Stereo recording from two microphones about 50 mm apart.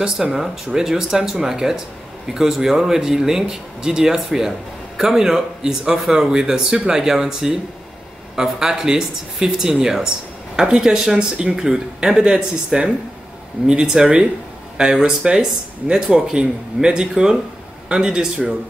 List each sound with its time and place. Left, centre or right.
0.0 s speech: centre